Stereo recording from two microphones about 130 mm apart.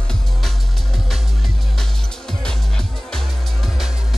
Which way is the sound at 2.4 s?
5° left (ahead or behind).